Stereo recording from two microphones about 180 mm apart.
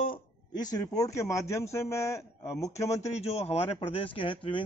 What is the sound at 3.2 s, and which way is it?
Speech, 35° left (ahead or behind).